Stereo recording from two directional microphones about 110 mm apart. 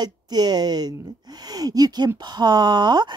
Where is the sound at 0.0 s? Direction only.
40° right (ahead or behind).